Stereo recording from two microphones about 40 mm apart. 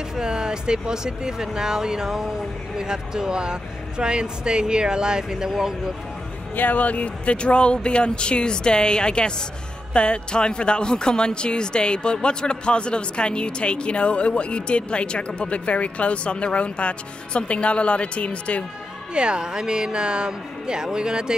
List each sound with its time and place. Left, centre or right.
0.1 s speech: centre
6.5 s speech: left
19.1 s speech: right